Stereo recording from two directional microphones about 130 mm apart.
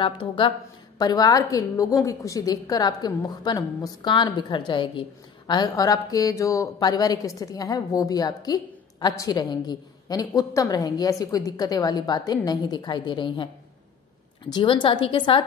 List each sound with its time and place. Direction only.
0.0 s a woman's voice: 40° left (ahead or behind)
14.5 s a woman's voice: 35° left (ahead or behind)